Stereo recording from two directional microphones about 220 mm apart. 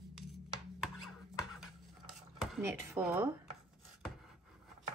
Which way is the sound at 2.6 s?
5° right (ahead or behind).